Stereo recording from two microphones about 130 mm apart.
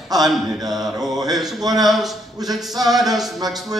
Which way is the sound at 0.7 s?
Centre (ahead or behind).